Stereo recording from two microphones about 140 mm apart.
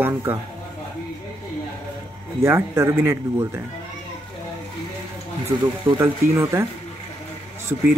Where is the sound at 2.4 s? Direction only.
15° right (ahead or behind).